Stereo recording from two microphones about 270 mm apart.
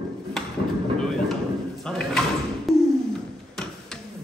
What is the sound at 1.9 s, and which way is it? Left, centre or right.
Sliding door, centre.